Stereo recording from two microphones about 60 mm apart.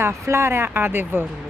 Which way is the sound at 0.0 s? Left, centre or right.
Right.